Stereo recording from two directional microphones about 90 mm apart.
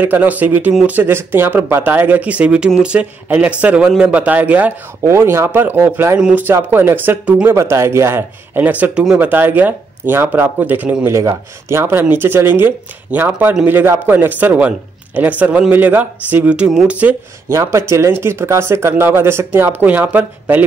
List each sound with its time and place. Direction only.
0.0 s speech: 20° right (ahead or behind)
5.0 s speech: 30° right (ahead or behind)
6.1 s speech: 10° right (ahead or behind)
6.4 s speech: 25° right (ahead or behind)
11.1 s speech: 30° right (ahead or behind); by 17.1 s 15° right (ahead or behind)
17.5 s speech: 30° right (ahead or behind)